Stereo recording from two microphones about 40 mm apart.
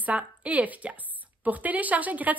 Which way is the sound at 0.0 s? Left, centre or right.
Right.